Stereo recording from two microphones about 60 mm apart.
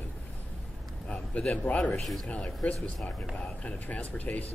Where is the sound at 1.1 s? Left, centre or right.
Centre.